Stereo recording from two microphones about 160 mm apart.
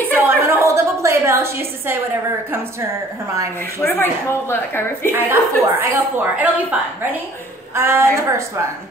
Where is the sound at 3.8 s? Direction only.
15° left (ahead or behind).